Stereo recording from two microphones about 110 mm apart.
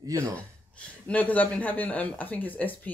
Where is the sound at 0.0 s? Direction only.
30° right (ahead or behind).